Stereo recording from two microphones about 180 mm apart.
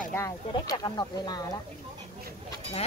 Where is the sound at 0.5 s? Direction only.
20° left (ahead or behind).